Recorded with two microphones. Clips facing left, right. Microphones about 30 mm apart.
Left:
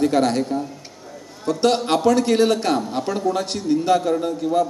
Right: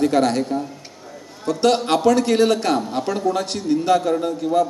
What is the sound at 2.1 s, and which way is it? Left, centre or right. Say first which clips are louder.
Speech: even; right.